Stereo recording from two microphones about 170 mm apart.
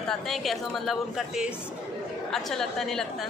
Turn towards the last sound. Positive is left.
turn(degrees=0)  # may be behind; listen again after turning